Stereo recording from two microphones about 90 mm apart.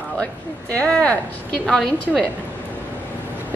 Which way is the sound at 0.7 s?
15° left (ahead or behind).